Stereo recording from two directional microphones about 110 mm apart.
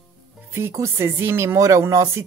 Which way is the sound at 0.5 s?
25° right (ahead or behind).